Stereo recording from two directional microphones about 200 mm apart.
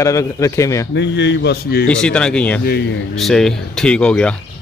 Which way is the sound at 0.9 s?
65° left (ahead or behind).